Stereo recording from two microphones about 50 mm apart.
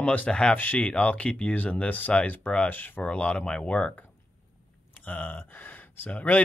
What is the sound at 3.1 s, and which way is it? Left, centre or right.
Speech, left.